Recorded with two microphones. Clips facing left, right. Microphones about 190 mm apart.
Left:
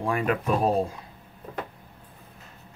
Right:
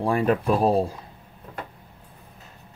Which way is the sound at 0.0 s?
35° right (ahead or behind).